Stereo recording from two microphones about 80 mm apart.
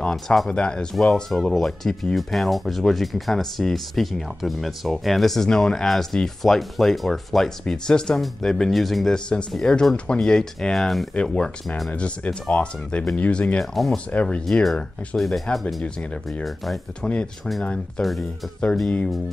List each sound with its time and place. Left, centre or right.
0.1 s speech: centre
11.9 s speech: centre
14.4 s speech: centre
16.4 s speech: centre
17.0 s speech: centre